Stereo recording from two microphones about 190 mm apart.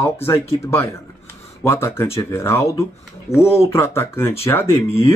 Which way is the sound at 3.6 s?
15° left (ahead or behind).